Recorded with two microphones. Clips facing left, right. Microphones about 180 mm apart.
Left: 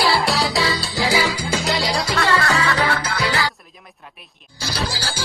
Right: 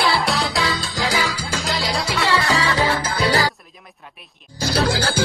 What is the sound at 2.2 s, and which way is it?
Music, 15° right (ahead or behind).